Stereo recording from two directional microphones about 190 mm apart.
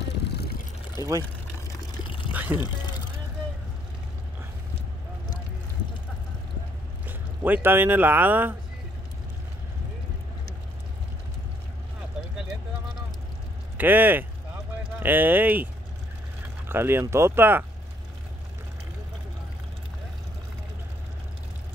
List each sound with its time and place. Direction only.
0.2 s a sound: 60° left (ahead or behind)
1.0 s speech: 15° right (ahead or behind)
2.0 s pour: 25° left (ahead or behind)
2.3 s speech: 10° right (ahead or behind)
7.1 s speech: 10° right (ahead or behind)
13.7 s speech: 10° right (ahead or behind)